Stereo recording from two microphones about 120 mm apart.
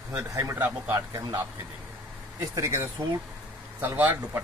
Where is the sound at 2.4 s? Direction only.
25° right (ahead or behind).